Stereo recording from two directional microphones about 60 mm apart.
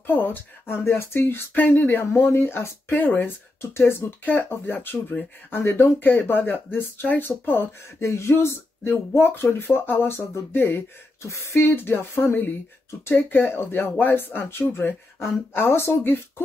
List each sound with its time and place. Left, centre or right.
0.0 s speech: left
1.5 s speech: left
11.2 s speech: left
11.7 s speech: left